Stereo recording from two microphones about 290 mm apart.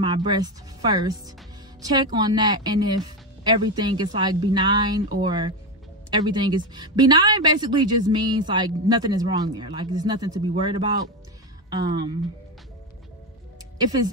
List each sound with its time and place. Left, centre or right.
0.0 s a woman's voice: centre